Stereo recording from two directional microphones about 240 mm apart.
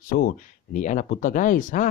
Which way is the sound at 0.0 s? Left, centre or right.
Left.